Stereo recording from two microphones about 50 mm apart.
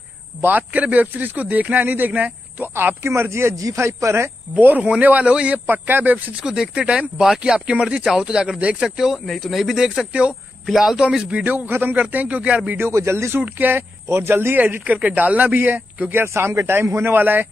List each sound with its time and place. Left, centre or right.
0.4 s speech: right
3.0 s speech: right
4.6 s speech: right
5.7 s speech: right
6.4 s speech: centre
9.1 s speech: centre
11.0 s speech: centre
11.5 s speech: right
12.3 s speech: right
12.9 s speech: right
13.6 s speech: right
14.9 s speech: right
16.3 s speech: right
17.0 s speech: right